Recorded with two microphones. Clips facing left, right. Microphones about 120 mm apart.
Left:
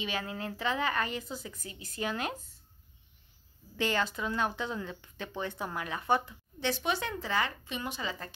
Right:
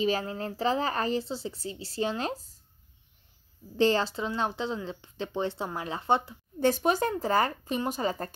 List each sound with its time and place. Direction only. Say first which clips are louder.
0.0 s speech: right 7 dB; 35° right (ahead or behind)
3.7 s speech: right 7 dB; 30° right (ahead or behind)
6.6 s speech: right 7 dB; 45° right (ahead or behind)